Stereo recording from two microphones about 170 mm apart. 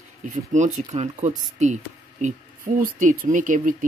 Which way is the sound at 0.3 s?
50° right (ahead or behind).